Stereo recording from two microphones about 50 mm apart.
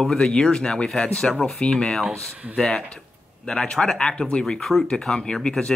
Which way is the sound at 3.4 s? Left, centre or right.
Centre.